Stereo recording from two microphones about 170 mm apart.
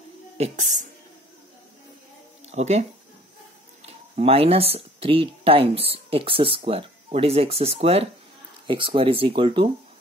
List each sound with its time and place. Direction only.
0.4 s speech: 45° right (ahead or behind)
2.5 s speech: 40° right (ahead or behind)
3.8 s speech: 35° right (ahead or behind)